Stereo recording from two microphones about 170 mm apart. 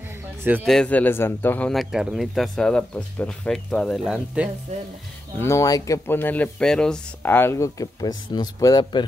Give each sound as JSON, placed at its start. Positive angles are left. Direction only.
{"t": 0.7, "sound": "speech", "side_deg": 5}
{"t": 1.7, "sound": "speech", "side_deg": 0}
{"t": 5.4, "sound": "speech", "side_deg": 20}